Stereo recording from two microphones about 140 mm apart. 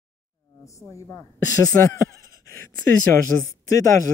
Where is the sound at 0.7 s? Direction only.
20° left (ahead or behind).